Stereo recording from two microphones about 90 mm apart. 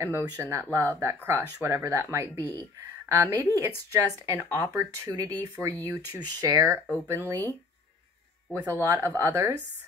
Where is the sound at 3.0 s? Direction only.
30° right (ahead or behind).